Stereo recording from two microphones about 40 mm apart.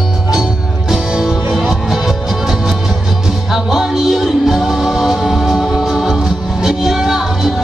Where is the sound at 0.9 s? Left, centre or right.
Centre.